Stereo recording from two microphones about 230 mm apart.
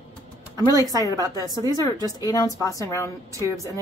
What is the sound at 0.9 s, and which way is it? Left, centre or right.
Speech, centre.